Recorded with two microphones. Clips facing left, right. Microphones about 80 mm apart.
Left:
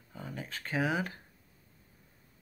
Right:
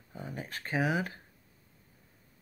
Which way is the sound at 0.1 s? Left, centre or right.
Right.